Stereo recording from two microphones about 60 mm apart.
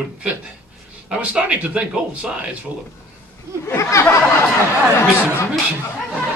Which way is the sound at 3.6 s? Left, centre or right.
Left.